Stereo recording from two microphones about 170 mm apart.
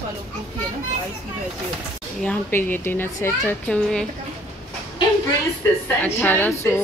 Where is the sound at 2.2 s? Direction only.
10° left (ahead or behind).